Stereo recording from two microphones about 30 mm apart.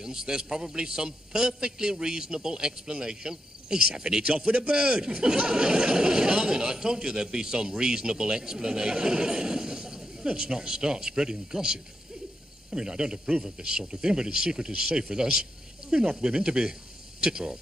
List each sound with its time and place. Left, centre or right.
0.0 s a man's voice: right